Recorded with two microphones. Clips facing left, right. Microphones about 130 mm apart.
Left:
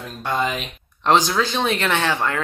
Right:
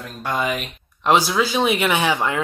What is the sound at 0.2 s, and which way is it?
Speech, 5° right (ahead or behind).